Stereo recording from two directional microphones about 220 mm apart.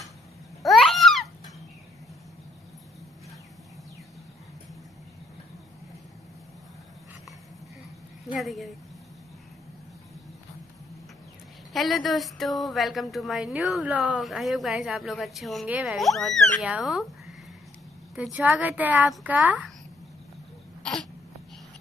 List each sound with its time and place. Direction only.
0.6 s babbling: centre (ahead or behind)
8.3 s speech: centre (ahead or behind)
11.7 s speech: centre (ahead or behind)
18.1 s a woman's voice: 5° right (ahead or behind)
20.8 s throat clearing: 5° left (ahead or behind)